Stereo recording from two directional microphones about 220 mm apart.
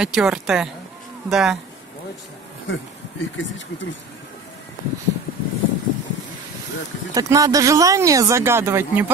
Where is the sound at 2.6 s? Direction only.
60° left (ahead or behind).